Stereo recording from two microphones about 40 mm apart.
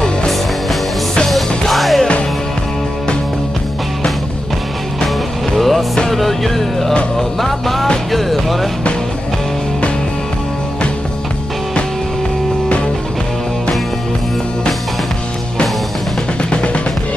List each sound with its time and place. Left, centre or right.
1.2 s music: centre
5.6 s music: centre
16.4 s music: left